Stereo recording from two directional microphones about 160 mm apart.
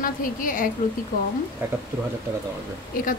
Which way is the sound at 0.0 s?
60° left (ahead or behind).